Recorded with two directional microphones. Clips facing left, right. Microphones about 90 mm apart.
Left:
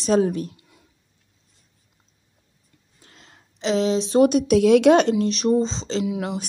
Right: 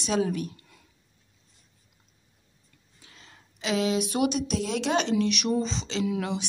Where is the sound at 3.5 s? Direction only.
30° left (ahead or behind).